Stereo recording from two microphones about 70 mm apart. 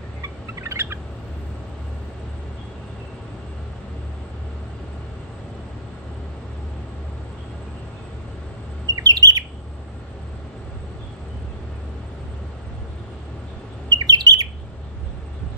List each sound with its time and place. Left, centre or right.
0.6 s bird: right
8.8 s bird: right
13.8 s bird: right